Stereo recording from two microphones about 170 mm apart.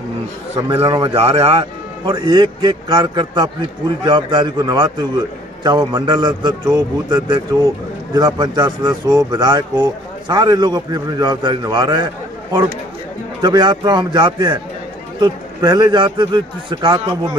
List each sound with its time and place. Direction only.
0.8 s a man's voice: 20° right (ahead or behind)
1.1 s a man's voice: 35° right (ahead or behind)
13.4 s a man's voice: 25° right (ahead or behind)